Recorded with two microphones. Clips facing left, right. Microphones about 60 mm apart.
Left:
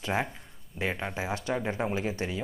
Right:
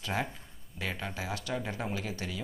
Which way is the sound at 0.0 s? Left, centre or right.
Left.